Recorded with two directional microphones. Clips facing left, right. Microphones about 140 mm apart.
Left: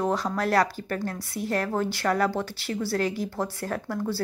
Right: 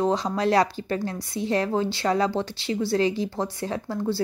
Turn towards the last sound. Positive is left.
turn(degrees=-20)  # may be behind; listen again after turning